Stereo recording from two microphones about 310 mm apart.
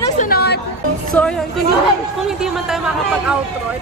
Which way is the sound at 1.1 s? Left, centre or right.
Centre.